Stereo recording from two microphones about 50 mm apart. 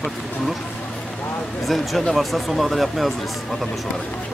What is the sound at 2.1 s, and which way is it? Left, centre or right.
Speech, centre.